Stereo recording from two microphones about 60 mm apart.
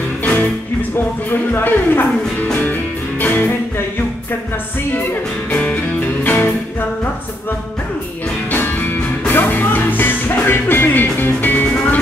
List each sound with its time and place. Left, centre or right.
0.9 s speech: left
3.2 s music: left
5.5 s music: left
8.5 s music: left